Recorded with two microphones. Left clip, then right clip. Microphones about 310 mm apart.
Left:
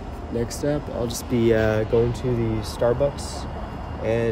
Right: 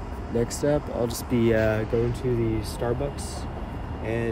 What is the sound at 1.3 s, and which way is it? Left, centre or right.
Speech, centre.